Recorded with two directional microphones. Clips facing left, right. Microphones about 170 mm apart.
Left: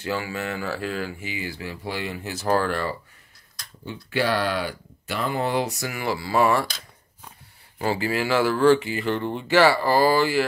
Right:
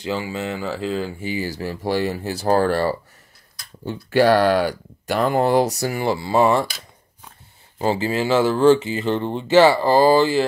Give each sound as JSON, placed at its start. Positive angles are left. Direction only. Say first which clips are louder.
{"t": 0.0, "sound": "speech", "louder": "right 3 dB", "side_deg": -20}
{"t": 7.8, "sound": "speech", "louder": "right 4 dB", "side_deg": -25}